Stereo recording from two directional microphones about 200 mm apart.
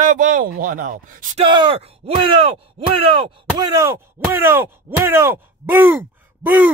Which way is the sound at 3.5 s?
15° right (ahead or behind).